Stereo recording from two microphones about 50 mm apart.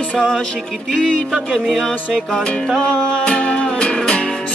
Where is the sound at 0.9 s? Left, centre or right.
Centre.